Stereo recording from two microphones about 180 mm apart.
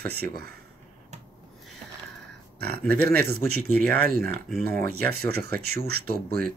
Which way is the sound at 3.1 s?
60° right (ahead or behind).